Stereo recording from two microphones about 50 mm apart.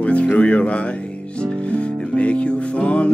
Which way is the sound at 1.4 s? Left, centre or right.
Left.